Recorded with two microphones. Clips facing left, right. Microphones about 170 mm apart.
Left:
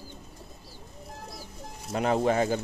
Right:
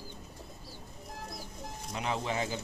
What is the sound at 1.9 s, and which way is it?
Speech, 50° left (ahead or behind).